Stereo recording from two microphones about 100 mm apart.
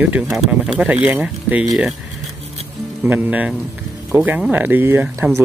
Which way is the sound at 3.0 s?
20° right (ahead or behind).